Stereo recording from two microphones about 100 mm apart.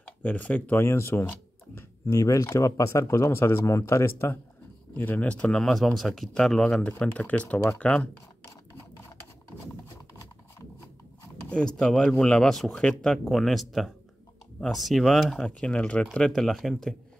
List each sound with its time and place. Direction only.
0.2 s speech: 15° left (ahead or behind)
11.4 s speech: 10° left (ahead or behind)